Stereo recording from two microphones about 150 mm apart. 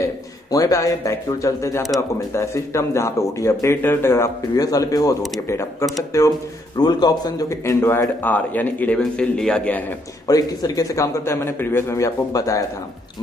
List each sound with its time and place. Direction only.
0.5 s speech: 20° left (ahead or behind)
10.2 s speech: 25° left (ahead or behind)